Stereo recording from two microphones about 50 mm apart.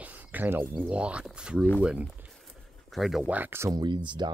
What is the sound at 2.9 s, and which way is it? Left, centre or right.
Speech, centre.